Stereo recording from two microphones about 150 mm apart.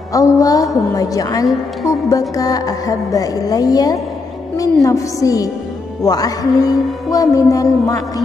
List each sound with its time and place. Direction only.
0.1 s music: 25° left (ahead or behind)